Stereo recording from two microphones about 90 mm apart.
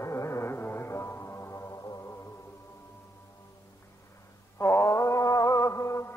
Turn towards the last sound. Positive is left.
turn(degrees=35)  # may be behind; listen again after turning